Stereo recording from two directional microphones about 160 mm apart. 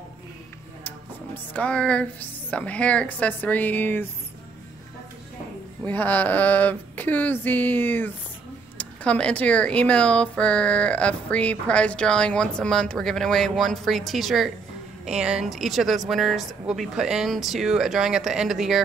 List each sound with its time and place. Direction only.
0.8 s music: 10° left (ahead or behind)
2.5 s speech: 10° left (ahead or behind)
5.9 s speech: 10° left (ahead or behind)